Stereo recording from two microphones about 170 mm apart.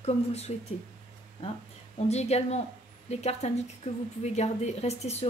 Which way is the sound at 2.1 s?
40° left (ahead or behind).